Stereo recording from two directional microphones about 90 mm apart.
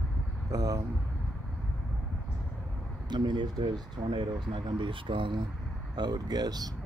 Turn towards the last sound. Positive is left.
turn(degrees=-45)  # may be behind; listen again after turning